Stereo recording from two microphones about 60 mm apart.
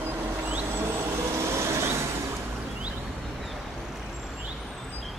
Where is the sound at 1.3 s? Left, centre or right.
Right.